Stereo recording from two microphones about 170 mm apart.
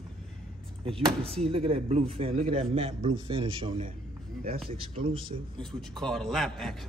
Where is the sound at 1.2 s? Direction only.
35° right (ahead or behind).